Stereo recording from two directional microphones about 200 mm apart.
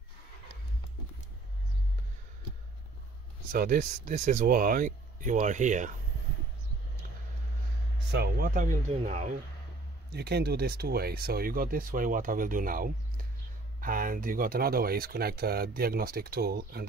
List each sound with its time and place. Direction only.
3.5 s speech: 45° right (ahead or behind)
8.1 s speech: 55° right (ahead or behind); by 9.3 s 35° right (ahead or behind)
10.1 s speech: 55° right (ahead or behind)